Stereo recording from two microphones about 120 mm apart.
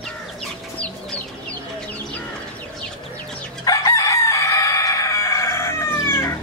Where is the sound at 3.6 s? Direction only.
30° left (ahead or behind).